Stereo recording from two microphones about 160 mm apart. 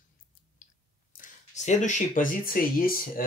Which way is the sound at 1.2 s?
50° left (ahead or behind).